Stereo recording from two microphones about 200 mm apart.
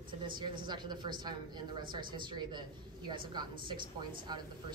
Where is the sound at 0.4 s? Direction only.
20° right (ahead or behind).